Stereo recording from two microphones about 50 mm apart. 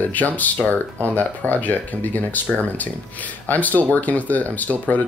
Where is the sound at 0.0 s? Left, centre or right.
Left.